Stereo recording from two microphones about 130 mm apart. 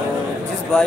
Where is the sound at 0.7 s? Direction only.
5° left (ahead or behind).